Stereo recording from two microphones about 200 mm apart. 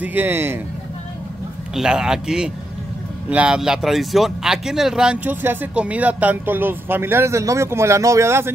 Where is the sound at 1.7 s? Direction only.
5° right (ahead or behind).